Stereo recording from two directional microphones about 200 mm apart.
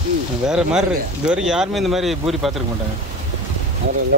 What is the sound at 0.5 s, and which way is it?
Speech, 5° right (ahead or behind).